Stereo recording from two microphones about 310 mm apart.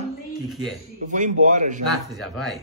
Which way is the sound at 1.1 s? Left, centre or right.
Right.